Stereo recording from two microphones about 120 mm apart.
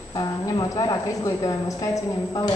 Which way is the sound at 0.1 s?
35° left (ahead or behind).